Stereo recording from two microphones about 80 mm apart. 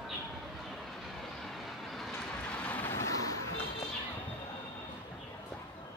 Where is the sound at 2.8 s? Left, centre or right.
Left.